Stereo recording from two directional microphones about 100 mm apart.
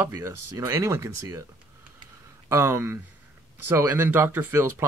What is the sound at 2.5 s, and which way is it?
Speech, 25° right (ahead or behind).